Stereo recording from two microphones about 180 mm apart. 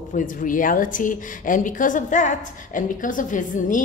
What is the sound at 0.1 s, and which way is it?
A woman's voice, 45° left (ahead or behind).